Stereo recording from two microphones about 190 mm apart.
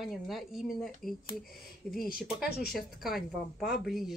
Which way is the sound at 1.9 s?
50° left (ahead or behind).